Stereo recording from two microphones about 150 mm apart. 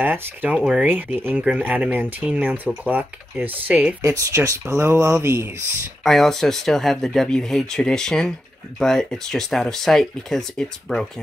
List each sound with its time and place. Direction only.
0.0 s speech: 10° right (ahead or behind)
6.0 s speech: centre (ahead or behind)